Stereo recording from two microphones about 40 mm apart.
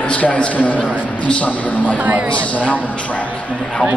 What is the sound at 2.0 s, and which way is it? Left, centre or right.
Speech, right.